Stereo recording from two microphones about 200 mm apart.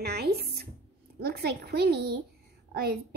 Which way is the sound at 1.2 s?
55° right (ahead or behind).